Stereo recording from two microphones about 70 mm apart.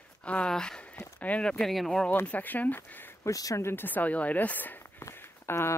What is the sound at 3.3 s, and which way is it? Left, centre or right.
Speech, left.